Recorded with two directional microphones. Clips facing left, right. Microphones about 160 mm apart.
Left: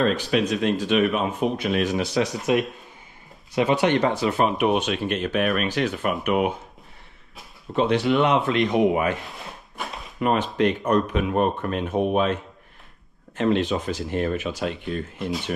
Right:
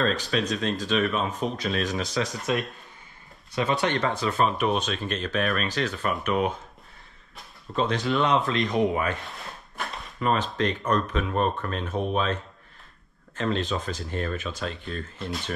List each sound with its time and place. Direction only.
0.0 s speech: 10° left (ahead or behind)
7.7 s speech: 10° left (ahead or behind)
9.5 s a sound: centre (ahead or behind)
10.2 s speech: 15° left (ahead or behind)
13.4 s speech: 15° left (ahead or behind)